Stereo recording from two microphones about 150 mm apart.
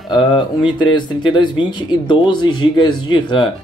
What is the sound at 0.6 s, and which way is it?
Speech, 30° left (ahead or behind).